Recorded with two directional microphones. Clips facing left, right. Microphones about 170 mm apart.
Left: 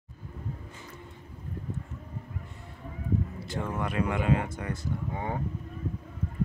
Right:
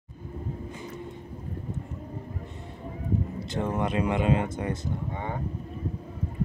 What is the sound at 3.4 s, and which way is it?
Speech, 20° right (ahead or behind).